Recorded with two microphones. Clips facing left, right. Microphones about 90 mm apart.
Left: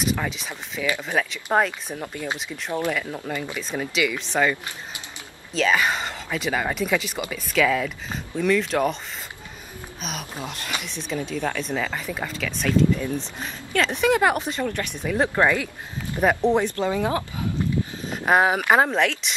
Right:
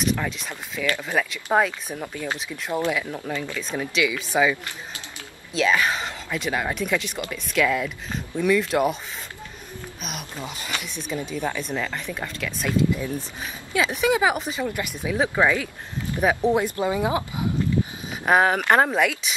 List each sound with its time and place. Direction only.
0.0 s speech: centre (ahead or behind)
3.3 s speech: 15° left (ahead or behind)
3.7 s speech: centre (ahead or behind)
10.4 s speech: centre (ahead or behind)
11.7 s speech: 10° left (ahead or behind)
16.7 s speech: 15° right (ahead or behind)
17.9 s a sound: 10° right (ahead or behind)
18.2 s speech: centre (ahead or behind)